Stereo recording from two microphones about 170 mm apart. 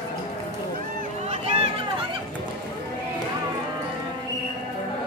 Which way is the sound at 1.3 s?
35° right (ahead or behind).